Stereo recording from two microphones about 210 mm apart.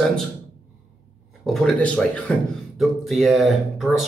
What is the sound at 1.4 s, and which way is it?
Speech, centre (ahead or behind).